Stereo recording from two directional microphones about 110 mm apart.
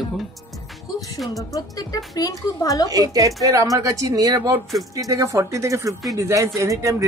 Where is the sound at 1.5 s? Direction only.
35° left (ahead or behind).